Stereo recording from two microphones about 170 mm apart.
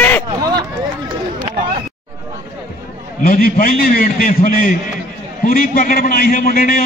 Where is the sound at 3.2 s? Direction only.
50° left (ahead or behind).